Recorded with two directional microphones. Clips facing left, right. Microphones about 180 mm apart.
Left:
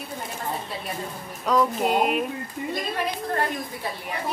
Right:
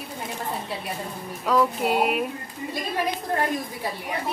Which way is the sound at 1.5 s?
5° right (ahead or behind).